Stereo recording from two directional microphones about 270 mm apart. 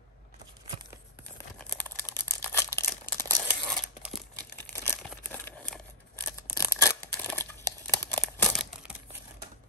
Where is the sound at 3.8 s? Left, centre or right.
Centre.